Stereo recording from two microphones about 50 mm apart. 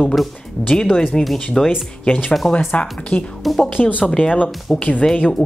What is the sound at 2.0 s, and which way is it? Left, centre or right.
Speech, left.